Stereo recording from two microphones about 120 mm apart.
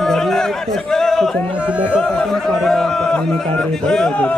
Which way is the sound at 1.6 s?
10° right (ahead or behind).